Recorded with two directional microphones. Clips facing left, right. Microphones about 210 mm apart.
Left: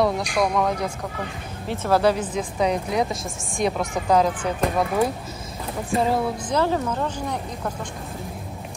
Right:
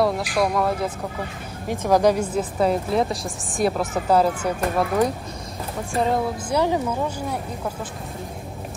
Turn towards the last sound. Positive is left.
turn(degrees=-10)  # may be behind; listen again after turning